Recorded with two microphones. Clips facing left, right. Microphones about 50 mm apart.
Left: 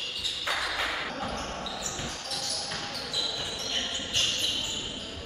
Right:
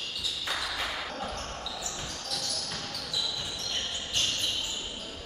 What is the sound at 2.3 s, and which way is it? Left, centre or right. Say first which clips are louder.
Basketball bounce: left 1 dB; centre.